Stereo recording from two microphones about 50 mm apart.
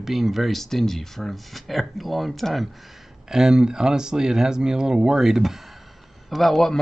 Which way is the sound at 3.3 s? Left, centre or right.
Centre.